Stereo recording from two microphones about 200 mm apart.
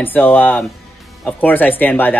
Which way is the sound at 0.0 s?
10° left (ahead or behind).